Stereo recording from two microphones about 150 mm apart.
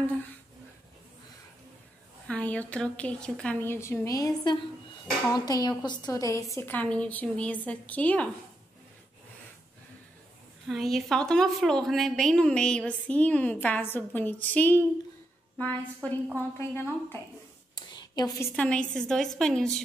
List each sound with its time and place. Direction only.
2.2 s a woman's voice: 10° left (ahead or behind)
10.7 s a woman's voice: centre (ahead or behind); by 17.2 s 15° left (ahead or behind)
17.7 s a sound: 25° left (ahead or behind)
18.6 s a woman's voice: 5° left (ahead or behind)